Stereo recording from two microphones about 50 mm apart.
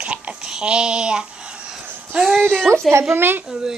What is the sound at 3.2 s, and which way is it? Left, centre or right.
Speech, right.